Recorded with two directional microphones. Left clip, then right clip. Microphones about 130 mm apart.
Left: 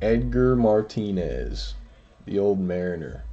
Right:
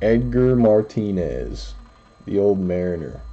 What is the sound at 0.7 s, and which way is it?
Speech, 15° right (ahead or behind).